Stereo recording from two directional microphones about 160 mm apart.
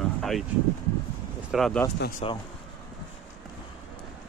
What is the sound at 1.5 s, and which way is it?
Speech, 5° left (ahead or behind).